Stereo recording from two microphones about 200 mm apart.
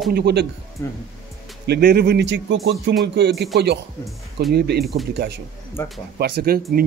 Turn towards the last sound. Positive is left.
turn(degrees=-50)  # may be behind; listen again after turning